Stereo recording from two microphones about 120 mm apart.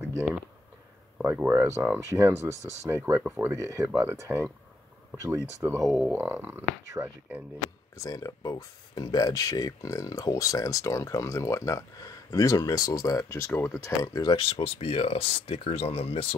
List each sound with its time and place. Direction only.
1.2 s speech: 15° right (ahead or behind)
5.9 s speech: centre (ahead or behind)
6.1 s speech: 20° right (ahead or behind)
8.0 s speech: 30° left (ahead or behind)
14.3 s speech: 50° left (ahead or behind)